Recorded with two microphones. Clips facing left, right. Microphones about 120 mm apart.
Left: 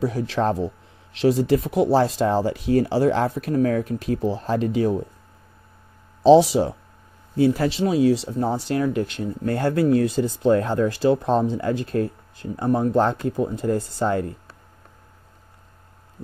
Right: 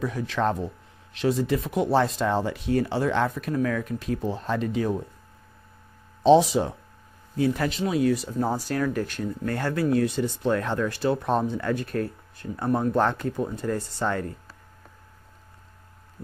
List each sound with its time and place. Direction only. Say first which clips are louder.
0.0 s speech: left 3 dB; 35° left (ahead or behind)
6.2 s speech: left 4 dB; 35° left (ahead or behind)